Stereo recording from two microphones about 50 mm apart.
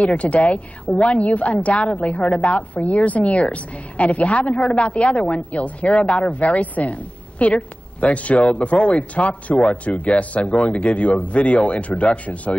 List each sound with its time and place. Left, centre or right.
0.0 s a woman's voice: left